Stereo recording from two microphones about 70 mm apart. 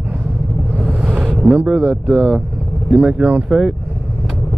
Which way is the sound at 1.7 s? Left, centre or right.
Centre.